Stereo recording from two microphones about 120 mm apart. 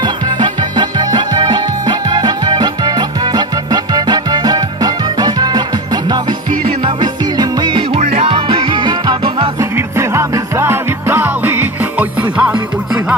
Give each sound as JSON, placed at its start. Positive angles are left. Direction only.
{"t": 0.0, "sound": "music", "side_deg": -35}
{"t": 8.0, "sound": "music", "side_deg": -60}
{"t": 8.3, "sound": "music", "side_deg": -45}
{"t": 9.6, "sound": "music", "side_deg": -20}